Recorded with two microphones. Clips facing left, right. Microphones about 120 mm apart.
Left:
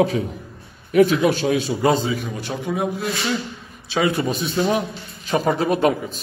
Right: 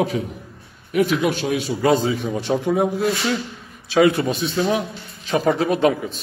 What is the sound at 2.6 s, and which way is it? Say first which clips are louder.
Speech: right 3 dB; 20° right (ahead or behind).